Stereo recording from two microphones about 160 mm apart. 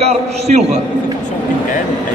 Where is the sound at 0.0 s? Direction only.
45° right (ahead or behind).